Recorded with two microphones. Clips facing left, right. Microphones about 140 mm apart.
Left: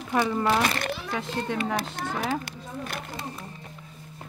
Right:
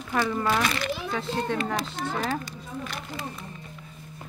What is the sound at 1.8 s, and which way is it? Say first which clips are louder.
Speech: even; 55° left (ahead or behind).